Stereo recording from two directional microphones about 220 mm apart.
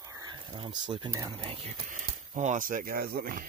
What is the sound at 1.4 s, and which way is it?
Speech, 25° right (ahead or behind).